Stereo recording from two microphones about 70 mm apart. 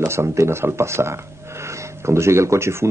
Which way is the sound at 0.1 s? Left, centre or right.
Right.